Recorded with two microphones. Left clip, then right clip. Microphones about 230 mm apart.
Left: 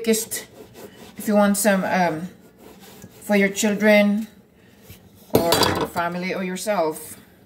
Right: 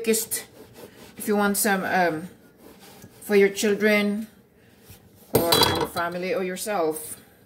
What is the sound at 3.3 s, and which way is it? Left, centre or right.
Speech, centre.